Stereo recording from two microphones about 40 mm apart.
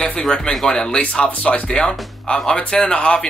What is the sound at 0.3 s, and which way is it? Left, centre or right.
Speech, centre.